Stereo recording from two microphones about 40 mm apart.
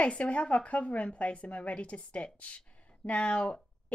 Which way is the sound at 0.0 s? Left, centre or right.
Left.